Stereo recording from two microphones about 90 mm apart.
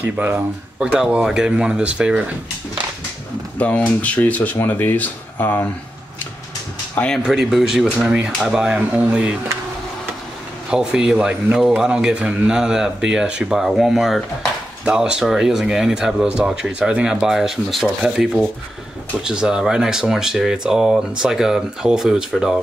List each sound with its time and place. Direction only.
0.0 s speech: 15° right (ahead or behind)
3.5 s speech: 15° left (ahead or behind)
7.2 s speech: 5° right (ahead or behind)
10.7 s speech: 10° right (ahead or behind)